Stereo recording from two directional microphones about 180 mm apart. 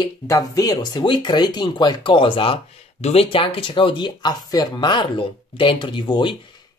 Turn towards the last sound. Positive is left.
turn(degrees=25)  # may be behind; listen again after turning